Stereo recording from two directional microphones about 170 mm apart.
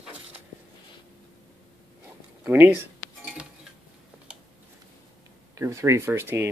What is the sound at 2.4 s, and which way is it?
Speech, 10° right (ahead or behind).